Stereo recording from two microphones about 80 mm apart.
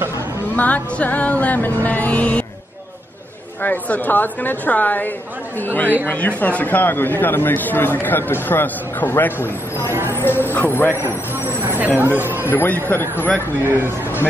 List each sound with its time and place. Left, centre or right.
0.6 s speech: centre
3.6 s speech: left
9.8 s speech: right
10.1 s speech: left
11.0 s speech: right
12.4 s speech: left
13.7 s speech: right